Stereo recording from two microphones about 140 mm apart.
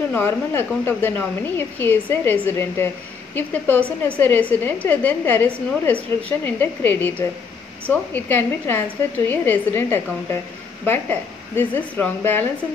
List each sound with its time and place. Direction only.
0.1 s a woman's voice: 15° left (ahead or behind)